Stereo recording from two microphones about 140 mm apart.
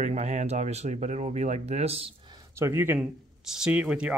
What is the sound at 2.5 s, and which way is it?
Speech, 20° right (ahead or behind).